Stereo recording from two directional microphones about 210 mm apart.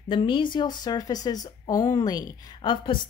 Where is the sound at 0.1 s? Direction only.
25° left (ahead or behind).